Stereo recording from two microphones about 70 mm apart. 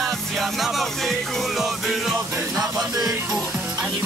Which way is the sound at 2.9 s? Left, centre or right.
Right.